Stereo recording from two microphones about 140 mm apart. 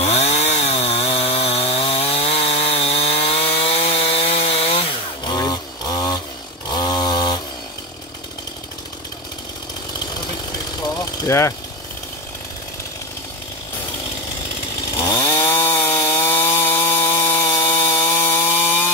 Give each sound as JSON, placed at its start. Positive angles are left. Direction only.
{"t": 0.0, "sound": "chainsaw", "side_deg": 50}
{"t": 5.2, "sound": "a sound", "side_deg": 25}
{"t": 6.7, "sound": "chainsaw", "side_deg": 30}
{"t": 11.2, "sound": "speech", "side_deg": 20}
{"t": 15.2, "sound": "chainsaw", "side_deg": 20}